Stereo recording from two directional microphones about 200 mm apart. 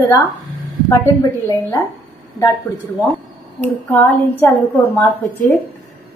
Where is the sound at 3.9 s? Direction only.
10° left (ahead or behind).